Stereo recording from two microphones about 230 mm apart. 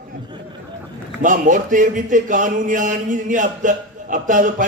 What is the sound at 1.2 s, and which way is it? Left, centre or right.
A man's voice, right.